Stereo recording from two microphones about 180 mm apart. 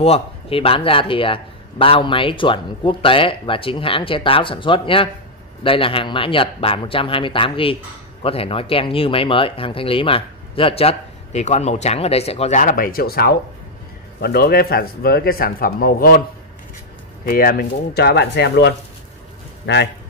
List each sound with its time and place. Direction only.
0.0 s a man's voice: 30° left (ahead or behind); by 16.2 s 55° left (ahead or behind)
17.2 s speech: 55° left (ahead or behind); by 19.9 s 70° left (ahead or behind)